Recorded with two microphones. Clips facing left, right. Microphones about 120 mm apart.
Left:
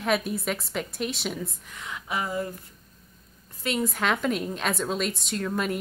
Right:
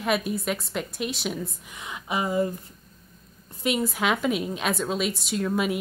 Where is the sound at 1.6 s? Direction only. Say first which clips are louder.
Right 2 dB; 15° right (ahead or behind).